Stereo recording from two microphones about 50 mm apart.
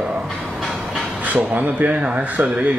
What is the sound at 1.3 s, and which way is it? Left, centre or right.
Speech, right.